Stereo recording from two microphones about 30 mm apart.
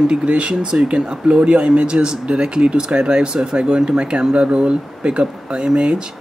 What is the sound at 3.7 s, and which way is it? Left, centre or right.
Speech, right.